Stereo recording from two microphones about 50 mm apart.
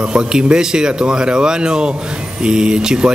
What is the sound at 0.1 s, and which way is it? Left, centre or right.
Speech, centre.